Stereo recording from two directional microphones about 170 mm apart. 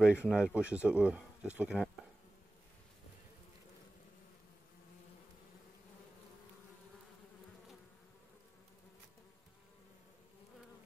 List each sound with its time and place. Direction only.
0.0 s speech: 5° right (ahead or behind)